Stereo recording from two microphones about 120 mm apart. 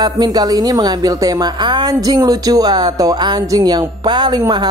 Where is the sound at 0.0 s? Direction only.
35° right (ahead or behind).